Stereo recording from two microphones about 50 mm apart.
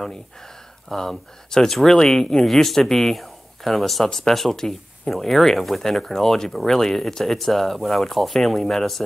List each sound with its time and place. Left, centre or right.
0.8 s speech: centre